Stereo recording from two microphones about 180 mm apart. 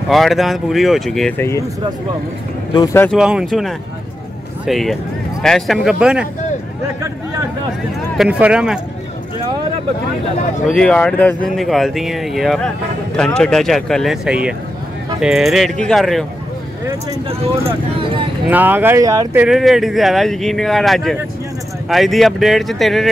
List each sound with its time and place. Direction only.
0.1 s speech: centre (ahead or behind)
2.7 s speech: 20° left (ahead or behind)
3.1 s speech: 5° right (ahead or behind)
8.2 s speech: 5° right (ahead or behind)
10.7 s speech: 5° left (ahead or behind)
18.5 s speech: 10° right (ahead or behind)
19.4 s speech: centre (ahead or behind)